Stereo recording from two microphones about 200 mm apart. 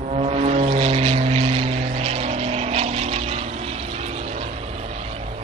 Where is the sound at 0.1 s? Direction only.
30° right (ahead or behind).